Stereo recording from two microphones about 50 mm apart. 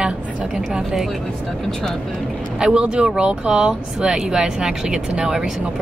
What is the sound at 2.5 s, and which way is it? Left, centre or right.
Speech, centre.